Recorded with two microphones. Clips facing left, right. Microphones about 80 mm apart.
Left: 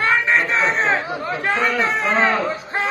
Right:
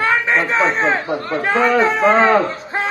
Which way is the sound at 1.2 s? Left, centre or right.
Centre.